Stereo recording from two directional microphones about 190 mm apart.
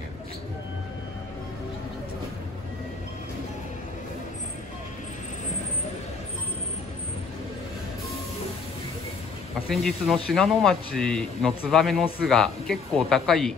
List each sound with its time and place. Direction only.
9.7 s speech: centre (ahead or behind)